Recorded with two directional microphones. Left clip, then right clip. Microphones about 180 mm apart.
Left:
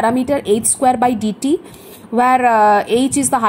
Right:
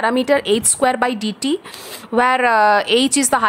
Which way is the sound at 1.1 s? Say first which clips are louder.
Left 3 dB; 65° right (ahead or behind).